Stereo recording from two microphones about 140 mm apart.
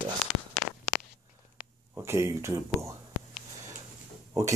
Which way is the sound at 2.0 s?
20° right (ahead or behind).